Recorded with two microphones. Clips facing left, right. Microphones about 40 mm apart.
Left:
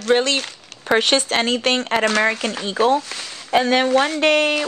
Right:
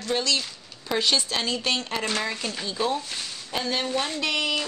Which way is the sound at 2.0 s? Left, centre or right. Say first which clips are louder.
Left 10 dB; left.